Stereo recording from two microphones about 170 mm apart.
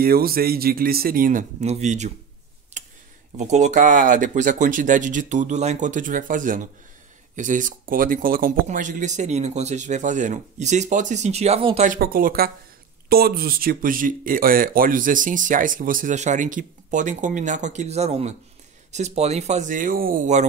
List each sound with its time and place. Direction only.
0.0 s speech: 60° right (ahead or behind); by 2.1 s 45° right (ahead or behind)
2.8 s a sound: 45° right (ahead or behind)
3.3 s speech: 45° right (ahead or behind)
11.9 s speech: 55° right (ahead or behind)